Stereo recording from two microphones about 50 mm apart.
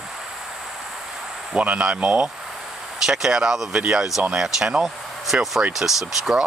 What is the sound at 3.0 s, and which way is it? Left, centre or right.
Speech, centre.